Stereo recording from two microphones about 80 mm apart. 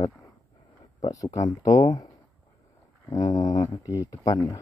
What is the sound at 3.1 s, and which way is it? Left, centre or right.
Speech, left.